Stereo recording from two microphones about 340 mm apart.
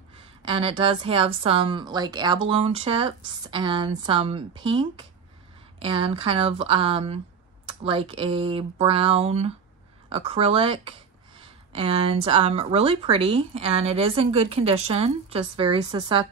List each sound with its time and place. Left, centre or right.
0.2 s speech: centre